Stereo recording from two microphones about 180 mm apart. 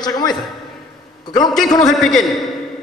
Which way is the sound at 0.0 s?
25° left (ahead or behind).